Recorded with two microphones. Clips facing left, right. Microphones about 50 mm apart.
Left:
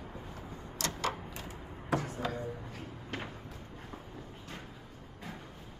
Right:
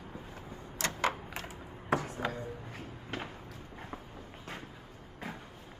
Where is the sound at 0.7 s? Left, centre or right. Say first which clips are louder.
Right 3 dB; right.